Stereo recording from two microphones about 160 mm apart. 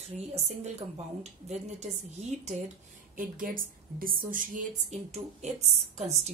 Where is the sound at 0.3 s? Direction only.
40° right (ahead or behind).